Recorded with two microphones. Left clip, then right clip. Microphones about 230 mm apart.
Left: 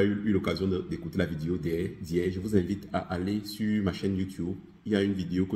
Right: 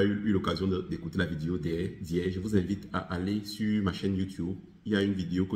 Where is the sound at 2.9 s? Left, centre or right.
Centre.